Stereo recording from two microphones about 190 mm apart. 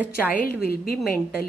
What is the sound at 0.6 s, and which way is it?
Speech, 50° left (ahead or behind).